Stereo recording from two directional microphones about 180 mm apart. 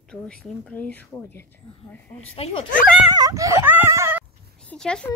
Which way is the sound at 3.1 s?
20° right (ahead or behind).